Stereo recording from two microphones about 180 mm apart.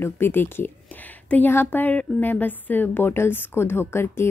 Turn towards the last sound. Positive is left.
turn(degrees=15)  # may be behind; listen again after turning